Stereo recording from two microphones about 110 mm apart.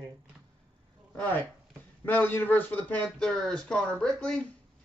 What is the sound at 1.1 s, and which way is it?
Speech, 15° left (ahead or behind).